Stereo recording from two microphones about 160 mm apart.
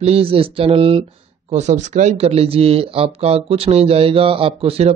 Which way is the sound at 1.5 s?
45° right (ahead or behind).